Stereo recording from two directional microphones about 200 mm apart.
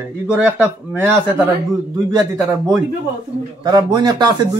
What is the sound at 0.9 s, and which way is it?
A man's voice, 10° right (ahead or behind).